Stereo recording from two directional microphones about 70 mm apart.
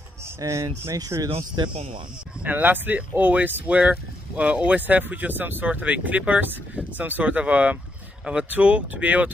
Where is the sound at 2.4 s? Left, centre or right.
Right.